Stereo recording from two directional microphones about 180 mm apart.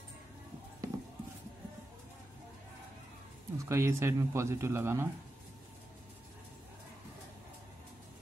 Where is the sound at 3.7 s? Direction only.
15° right (ahead or behind).